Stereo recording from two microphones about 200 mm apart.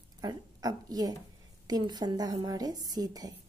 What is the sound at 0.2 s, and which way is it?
A woman's voice, 20° right (ahead or behind).